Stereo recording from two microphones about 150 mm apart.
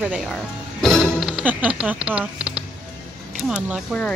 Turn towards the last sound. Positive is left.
turn(degrees=0)  # may be behind; listen again after turning